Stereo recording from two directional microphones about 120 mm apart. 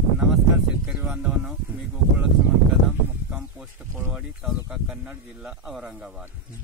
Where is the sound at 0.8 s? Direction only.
10° right (ahead or behind).